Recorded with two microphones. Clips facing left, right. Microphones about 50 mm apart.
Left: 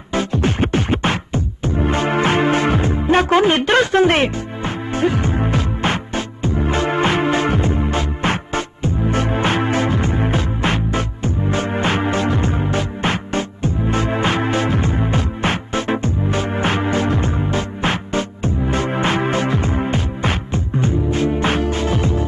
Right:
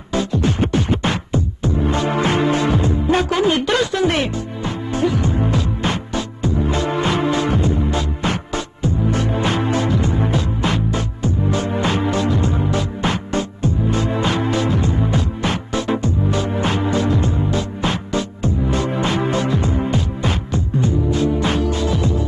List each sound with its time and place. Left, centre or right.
0.1 s music: left